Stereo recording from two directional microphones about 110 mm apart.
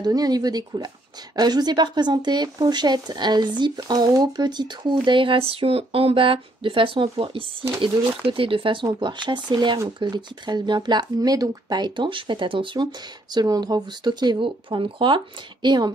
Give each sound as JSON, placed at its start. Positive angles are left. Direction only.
{"t": 0.0, "sound": "speech", "side_deg": -35}
{"t": 8.8, "sound": "speech", "side_deg": -45}
{"t": 13.3, "sound": "speech", "side_deg": -40}